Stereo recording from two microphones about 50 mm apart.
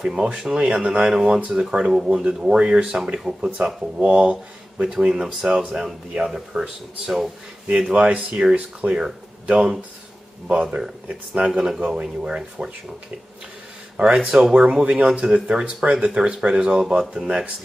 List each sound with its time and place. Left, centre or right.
0.0 s speech: centre
2.1 s speech: centre
7.9 s speech: right
11.5 s speech: centre
11.8 s speech: right
13.9 s speech: right
16.1 s speech: centre